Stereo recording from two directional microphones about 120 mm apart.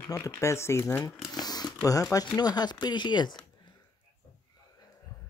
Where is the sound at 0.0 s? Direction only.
30° left (ahead or behind).